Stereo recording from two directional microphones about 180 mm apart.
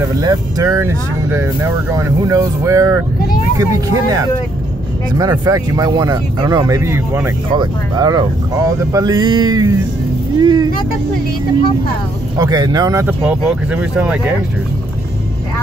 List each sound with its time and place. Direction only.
0.1 s speech: 20° right (ahead or behind)
12.4 s speech: 20° right (ahead or behind)
13.0 s speech: 5° right (ahead or behind)